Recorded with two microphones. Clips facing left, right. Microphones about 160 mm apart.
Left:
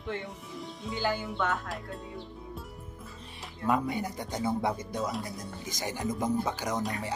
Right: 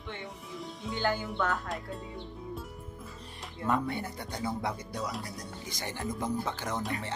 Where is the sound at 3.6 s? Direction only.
10° left (ahead or behind).